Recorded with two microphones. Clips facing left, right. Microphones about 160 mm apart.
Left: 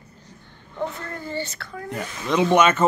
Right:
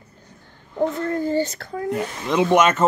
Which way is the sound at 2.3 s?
Centre (ahead or behind).